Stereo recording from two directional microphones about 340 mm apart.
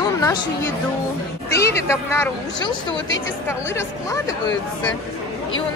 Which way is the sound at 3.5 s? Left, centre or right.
Centre.